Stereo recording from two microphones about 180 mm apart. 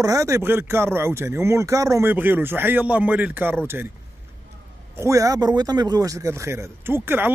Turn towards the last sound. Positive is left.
turn(degrees=-10)  # may be behind; listen again after turning